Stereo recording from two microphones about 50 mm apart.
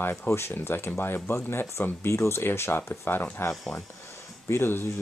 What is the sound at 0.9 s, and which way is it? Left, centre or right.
Speech, left.